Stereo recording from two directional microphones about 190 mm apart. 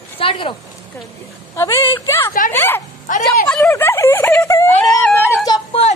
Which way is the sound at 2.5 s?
10° left (ahead or behind).